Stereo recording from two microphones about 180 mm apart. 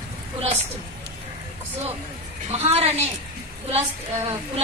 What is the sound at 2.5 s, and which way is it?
Speech, 35° right (ahead or behind).